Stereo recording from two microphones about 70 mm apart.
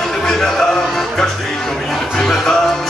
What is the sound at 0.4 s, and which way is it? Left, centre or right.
Music, centre.